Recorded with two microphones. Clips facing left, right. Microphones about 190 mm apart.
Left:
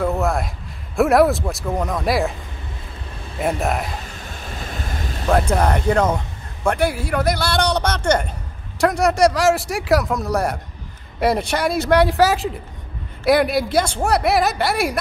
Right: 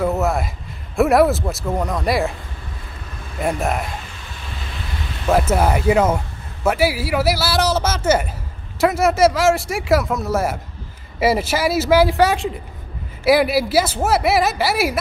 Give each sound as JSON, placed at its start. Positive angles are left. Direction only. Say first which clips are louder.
{"t": 0.0, "sound": "a man's voice", "louder": "right 1 dB", "side_deg": 0}
{"t": 3.3, "sound": "a man's voice", "louder": "even", "side_deg": 0}
{"t": 4.7, "sound": "vehicle", "louder": "left 1 dB", "side_deg": 45}
{"t": 5.3, "sound": "a man's voice", "louder": "right 1 dB", "side_deg": -5}